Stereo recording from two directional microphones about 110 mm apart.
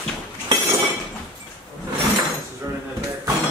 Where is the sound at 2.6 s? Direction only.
30° right (ahead or behind).